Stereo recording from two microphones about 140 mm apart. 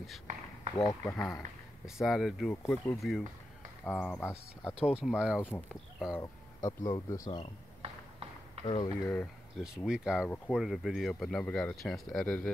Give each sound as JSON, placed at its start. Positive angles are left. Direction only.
{"t": 0.7, "sound": "speech", "side_deg": 20}
{"t": 1.9, "sound": "speech", "side_deg": 0}
{"t": 2.5, "sound": "speech", "side_deg": 15}
{"t": 3.0, "sound": "speech", "side_deg": 0}
{"t": 3.8, "sound": "speech", "side_deg": 10}
{"t": 4.9, "sound": "speech", "side_deg": -5}
{"t": 6.6, "sound": "speech", "side_deg": 30}
{"t": 7.8, "sound": "a sound", "side_deg": -45}
{"t": 8.6, "sound": "speech", "side_deg": 40}
{"t": 9.0, "sound": "speech", "side_deg": 10}
{"t": 9.6, "sound": "speech", "side_deg": -5}
{"t": 10.2, "sound": "speech", "side_deg": 15}
{"t": 10.5, "sound": "speech", "side_deg": 0}